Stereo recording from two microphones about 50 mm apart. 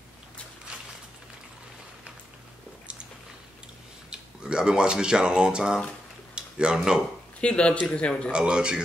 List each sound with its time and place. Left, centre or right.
4.1 s speech: centre
6.3 s a sound: centre
7.3 s speech: left
8.3 s speech: centre